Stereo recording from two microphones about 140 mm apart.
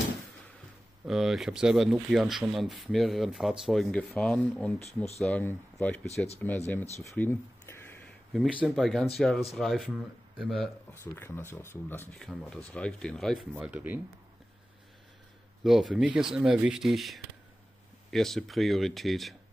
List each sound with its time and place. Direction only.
1.0 s speech: 5° right (ahead or behind)
4.7 s speech: 50° left (ahead or behind)
5.2 s speech: 10° left (ahead or behind)
7.2 s a sound: 15° left (ahead or behind)
8.0 s a sound: centre (ahead or behind)
8.5 s speech: 5° right (ahead or behind)
10.9 s speech: 15° left (ahead or behind)
12.2 s speech: 5° left (ahead or behind)
13.5 s speech: 10° right (ahead or behind)
15.6 s speech: centre (ahead or behind)